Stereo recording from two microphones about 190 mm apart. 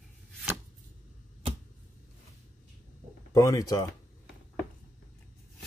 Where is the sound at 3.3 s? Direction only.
20° left (ahead or behind).